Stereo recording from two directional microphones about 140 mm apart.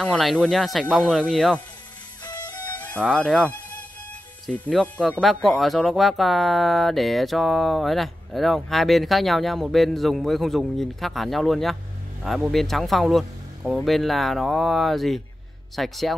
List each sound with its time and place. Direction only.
0.0 s speech: 5° left (ahead or behind)
2.2 s music: 30° left (ahead or behind)
2.6 s music: 10° left (ahead or behind)
4.5 s speech: 10° left (ahead or behind)